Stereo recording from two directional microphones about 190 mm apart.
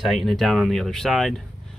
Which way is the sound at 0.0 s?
Centre (ahead or behind).